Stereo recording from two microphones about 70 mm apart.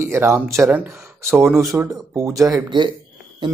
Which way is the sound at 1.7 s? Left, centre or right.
Right.